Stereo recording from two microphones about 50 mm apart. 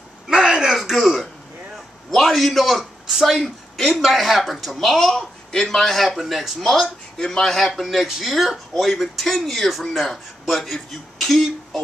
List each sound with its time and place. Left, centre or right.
0.3 s a sound: centre
0.7 s throat clearing: centre
2.0 s a man's voice: centre
6.7 s speech: centre